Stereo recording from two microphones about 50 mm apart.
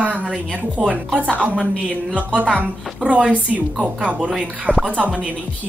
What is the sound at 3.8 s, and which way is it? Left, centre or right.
A woman's voice, centre.